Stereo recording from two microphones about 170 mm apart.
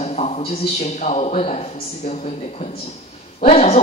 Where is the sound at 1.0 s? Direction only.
40° left (ahead or behind).